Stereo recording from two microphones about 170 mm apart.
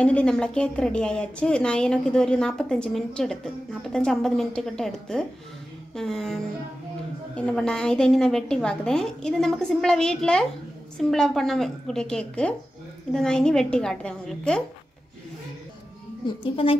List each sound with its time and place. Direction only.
0.0 s a woman's voice: 5° left (ahead or behind)
16.3 s a woman's voice: 30° left (ahead or behind)